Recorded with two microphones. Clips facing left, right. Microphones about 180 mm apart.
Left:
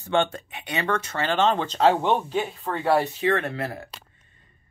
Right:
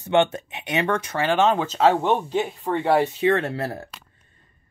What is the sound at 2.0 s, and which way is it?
Speech, 15° right (ahead or behind).